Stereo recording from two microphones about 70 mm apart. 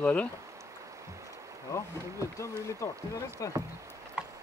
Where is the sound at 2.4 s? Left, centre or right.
Left.